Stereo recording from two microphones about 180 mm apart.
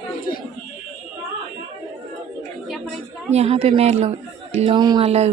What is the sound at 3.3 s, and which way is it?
A woman's voice, 35° right (ahead or behind).